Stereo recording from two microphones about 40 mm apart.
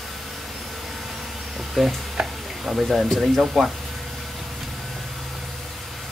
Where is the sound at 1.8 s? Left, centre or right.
Centre.